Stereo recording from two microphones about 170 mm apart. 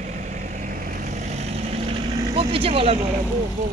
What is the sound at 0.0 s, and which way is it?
Vehicle, 45° right (ahead or behind).